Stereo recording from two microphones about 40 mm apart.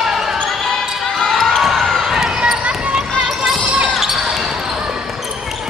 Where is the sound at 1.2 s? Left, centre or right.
Centre.